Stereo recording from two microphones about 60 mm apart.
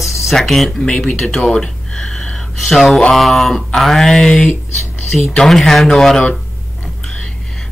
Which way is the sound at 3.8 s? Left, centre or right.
Centre.